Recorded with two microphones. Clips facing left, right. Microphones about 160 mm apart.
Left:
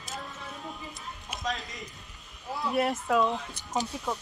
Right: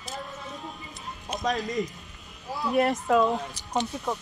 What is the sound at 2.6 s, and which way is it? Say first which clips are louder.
Speech: right 4 dB; centre (ahead or behind).